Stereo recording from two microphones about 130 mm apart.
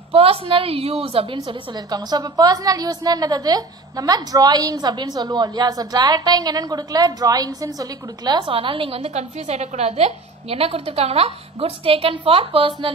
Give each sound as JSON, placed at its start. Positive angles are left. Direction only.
{"t": 0.1, "sound": "a woman's voice", "side_deg": -45}